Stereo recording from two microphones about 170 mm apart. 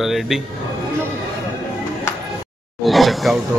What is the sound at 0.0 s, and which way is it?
Speech, centre (ahead or behind).